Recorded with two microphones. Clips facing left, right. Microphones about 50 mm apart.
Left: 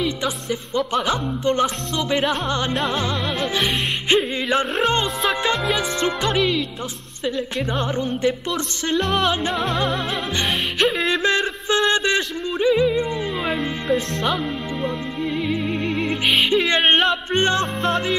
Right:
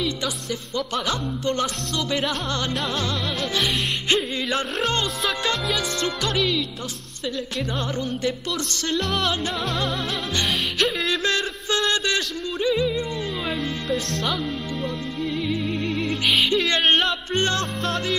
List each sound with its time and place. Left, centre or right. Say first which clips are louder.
0.2 s music: left 4 dB; left
11.0 s music: left 4 dB; left
14.2 s speech: left 3 dB; centre
15.2 s music: left 3 dB; left